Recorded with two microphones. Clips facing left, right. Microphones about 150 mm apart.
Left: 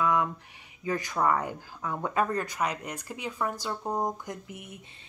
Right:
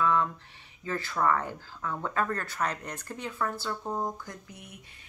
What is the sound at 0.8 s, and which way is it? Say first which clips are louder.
Speech: left 1 dB; 15° left (ahead or behind).